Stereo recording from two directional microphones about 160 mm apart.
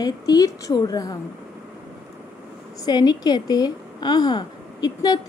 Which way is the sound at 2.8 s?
25° left (ahead or behind).